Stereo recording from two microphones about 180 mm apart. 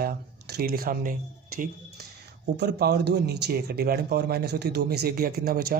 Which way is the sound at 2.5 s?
65° right (ahead or behind).